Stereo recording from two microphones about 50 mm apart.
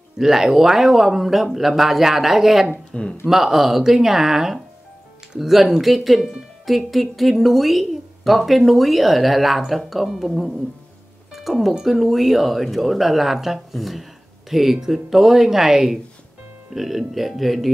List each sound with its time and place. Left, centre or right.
0.2 s speech: centre
2.9 s speech: centre
3.3 s speech: centre